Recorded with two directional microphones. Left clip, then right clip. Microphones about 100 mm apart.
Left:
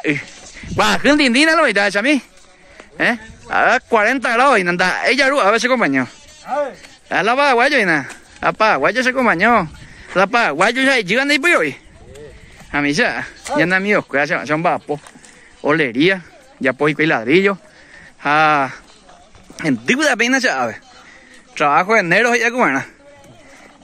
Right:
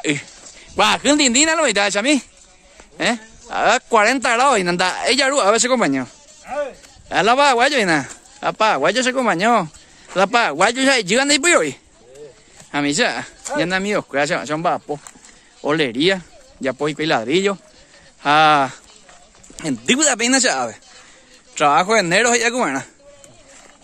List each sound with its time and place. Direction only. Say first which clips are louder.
0.0 s a man's voice: left 2 dB; 15° right (ahead or behind)
4.0 s speech: left 1 dB; 25° right (ahead or behind)
14.6 s speech: left 2 dB; 40° right (ahead or behind)
15.6 s speech: left 3 dB; 30° right (ahead or behind); by 17.6 s 10° right (ahead or behind)
18.2 s speech: even; 25° right (ahead or behind)